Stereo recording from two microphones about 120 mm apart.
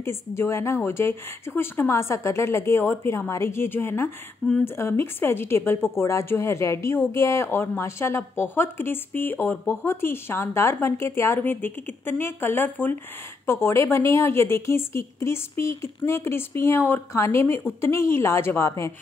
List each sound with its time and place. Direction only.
0.0 s a woman's voice: 20° left (ahead or behind)